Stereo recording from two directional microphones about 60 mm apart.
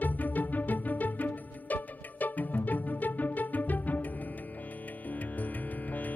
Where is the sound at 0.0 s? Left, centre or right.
Left.